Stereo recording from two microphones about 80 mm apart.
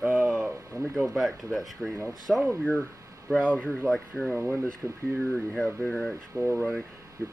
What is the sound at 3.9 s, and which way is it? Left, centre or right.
Speech, centre.